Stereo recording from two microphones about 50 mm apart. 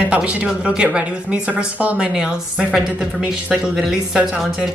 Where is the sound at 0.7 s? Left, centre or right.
Right.